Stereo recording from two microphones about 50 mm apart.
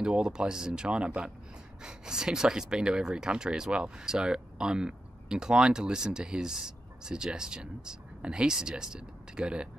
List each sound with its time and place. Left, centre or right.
0.0 s speech: centre